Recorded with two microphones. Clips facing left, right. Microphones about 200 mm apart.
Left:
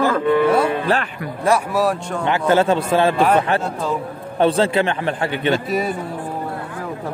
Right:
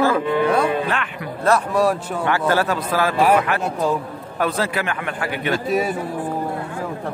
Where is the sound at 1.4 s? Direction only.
10° left (ahead or behind).